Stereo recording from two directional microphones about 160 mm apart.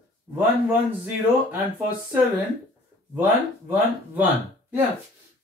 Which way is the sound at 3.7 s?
10° right (ahead or behind).